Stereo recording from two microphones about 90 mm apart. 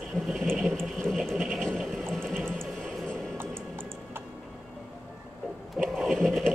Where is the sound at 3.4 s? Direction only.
25° right (ahead or behind).